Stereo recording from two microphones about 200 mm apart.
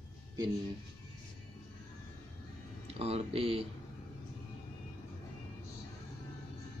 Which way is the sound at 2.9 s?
30° right (ahead or behind).